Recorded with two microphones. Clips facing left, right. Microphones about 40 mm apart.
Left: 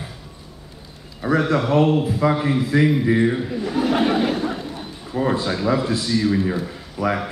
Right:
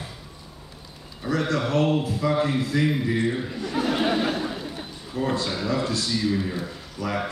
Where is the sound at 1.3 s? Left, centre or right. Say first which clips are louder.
Left 5 dB; centre.